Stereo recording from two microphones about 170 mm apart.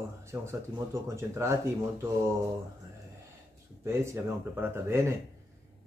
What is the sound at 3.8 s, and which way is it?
Speech, 15° right (ahead or behind).